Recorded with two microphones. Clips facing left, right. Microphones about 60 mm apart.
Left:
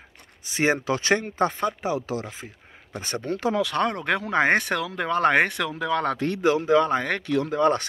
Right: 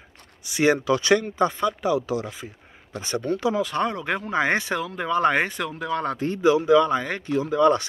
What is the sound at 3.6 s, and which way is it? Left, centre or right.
Speech, left.